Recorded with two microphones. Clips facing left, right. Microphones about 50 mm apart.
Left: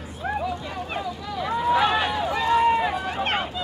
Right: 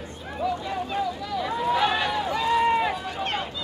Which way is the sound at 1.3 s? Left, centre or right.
Centre.